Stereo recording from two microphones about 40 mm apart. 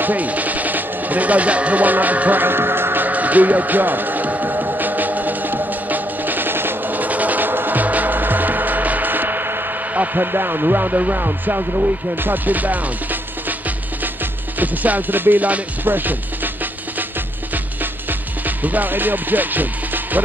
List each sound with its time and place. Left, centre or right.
0.0 s speech: right
2.4 s music: right
3.1 s music: right
6.9 s music: right
10.1 s speech: right
14.6 s music: right
18.6 s speech: right